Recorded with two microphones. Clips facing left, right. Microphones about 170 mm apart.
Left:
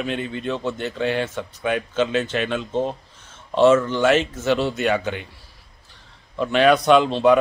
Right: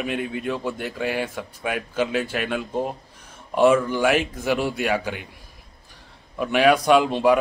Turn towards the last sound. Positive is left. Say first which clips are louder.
# left 2 dB
turn(degrees=-10)  # may be behind; listen again after turning